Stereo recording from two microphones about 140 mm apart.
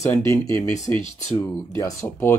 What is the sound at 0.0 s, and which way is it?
Speech, 20° left (ahead or behind).